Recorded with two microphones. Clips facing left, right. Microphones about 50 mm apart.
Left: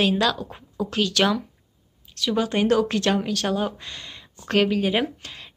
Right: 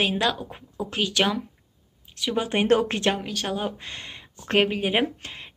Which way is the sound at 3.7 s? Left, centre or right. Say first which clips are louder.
Right 1 dB; right.